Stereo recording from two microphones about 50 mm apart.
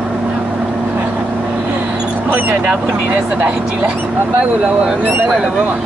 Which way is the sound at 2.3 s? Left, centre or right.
Right.